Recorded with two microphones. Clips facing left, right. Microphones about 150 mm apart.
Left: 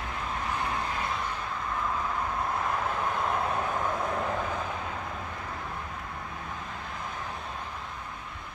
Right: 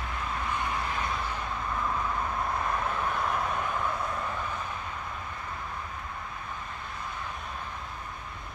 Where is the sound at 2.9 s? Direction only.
25° left (ahead or behind); by 5.0 s 90° left.